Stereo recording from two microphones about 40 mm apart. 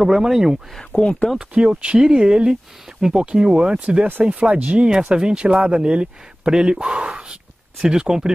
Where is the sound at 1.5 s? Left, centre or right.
Right.